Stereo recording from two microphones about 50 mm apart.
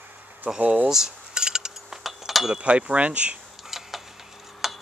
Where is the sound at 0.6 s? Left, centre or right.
Right.